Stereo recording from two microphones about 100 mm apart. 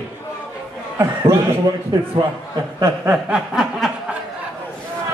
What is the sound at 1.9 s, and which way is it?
Speech, 40° right (ahead or behind).